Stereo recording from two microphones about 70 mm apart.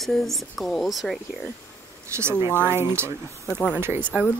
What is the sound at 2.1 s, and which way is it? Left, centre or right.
Speech, right.